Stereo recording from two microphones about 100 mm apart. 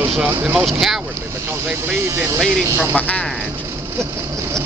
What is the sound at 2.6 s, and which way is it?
Speech, 30° right (ahead or behind).